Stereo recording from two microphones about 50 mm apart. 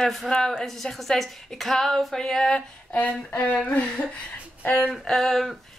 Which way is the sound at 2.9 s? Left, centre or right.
Centre.